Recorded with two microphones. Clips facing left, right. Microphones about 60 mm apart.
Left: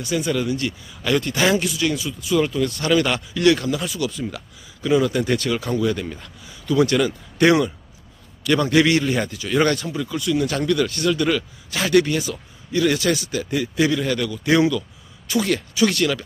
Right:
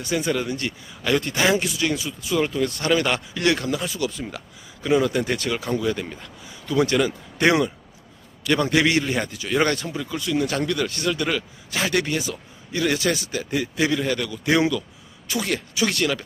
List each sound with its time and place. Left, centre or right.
0.0 s a man's voice: right; by 9.8 s centre
10.1 s speech: right
10.5 s speech: centre